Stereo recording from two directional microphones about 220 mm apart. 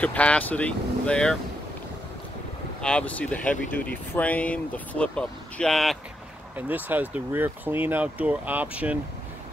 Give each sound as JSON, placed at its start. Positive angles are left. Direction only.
{"t": 0.0, "sound": "speech", "side_deg": 5}
{"t": 2.8, "sound": "speech", "side_deg": 5}